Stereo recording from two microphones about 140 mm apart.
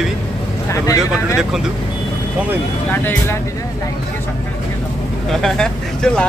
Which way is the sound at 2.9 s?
15° left (ahead or behind).